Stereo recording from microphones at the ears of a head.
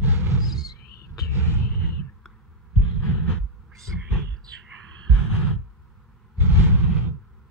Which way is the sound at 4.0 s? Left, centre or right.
Right.